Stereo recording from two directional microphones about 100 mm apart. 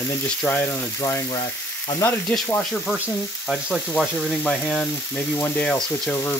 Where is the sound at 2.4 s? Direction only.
15° left (ahead or behind).